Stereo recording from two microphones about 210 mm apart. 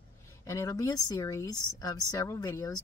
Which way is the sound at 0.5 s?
15° left (ahead or behind).